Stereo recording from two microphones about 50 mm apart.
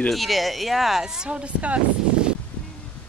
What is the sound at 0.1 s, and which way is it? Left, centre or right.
Speech, centre.